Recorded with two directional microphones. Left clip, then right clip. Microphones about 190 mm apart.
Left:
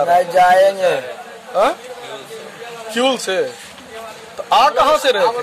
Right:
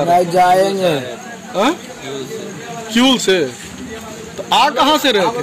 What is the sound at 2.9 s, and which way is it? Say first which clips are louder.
Speech: right 4 dB; 45° left (ahead or behind).